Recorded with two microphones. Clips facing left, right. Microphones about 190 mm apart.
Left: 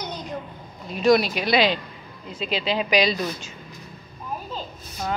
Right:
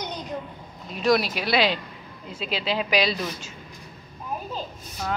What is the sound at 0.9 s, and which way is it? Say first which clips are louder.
Speech: left 3 dB; centre (ahead or behind).